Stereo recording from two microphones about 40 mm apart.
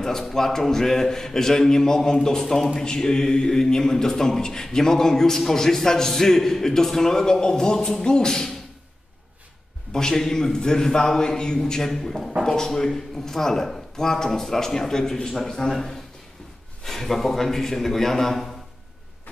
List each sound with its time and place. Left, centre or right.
0.0 s a man's voice: centre
9.9 s a man's voice: centre
11.9 s a man's voice: centre